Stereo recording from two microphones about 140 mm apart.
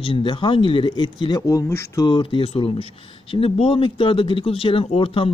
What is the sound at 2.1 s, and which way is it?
Speech, 35° left (ahead or behind).